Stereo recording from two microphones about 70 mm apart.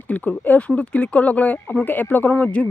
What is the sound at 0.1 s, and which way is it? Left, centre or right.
Speech, left.